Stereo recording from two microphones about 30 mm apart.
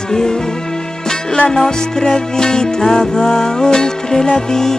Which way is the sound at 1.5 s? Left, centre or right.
Centre.